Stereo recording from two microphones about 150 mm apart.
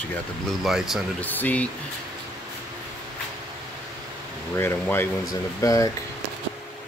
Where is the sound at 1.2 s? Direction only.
10° left (ahead or behind).